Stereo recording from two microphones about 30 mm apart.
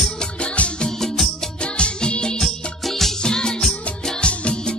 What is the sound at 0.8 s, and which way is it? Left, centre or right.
Music, centre.